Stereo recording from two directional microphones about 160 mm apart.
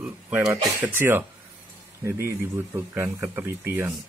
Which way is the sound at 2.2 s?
15° right (ahead or behind).